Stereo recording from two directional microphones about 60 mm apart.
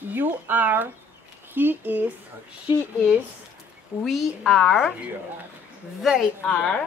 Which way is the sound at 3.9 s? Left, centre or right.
Right.